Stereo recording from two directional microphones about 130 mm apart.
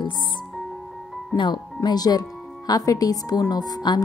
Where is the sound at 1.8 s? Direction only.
30° left (ahead or behind).